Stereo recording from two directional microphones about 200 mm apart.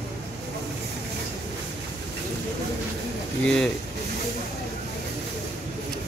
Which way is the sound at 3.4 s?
5° left (ahead or behind).